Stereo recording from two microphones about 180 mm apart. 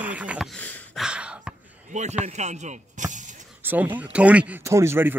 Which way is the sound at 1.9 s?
40° right (ahead or behind).